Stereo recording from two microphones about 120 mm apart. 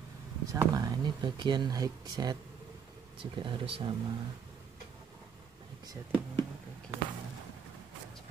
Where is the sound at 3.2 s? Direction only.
45° right (ahead or behind).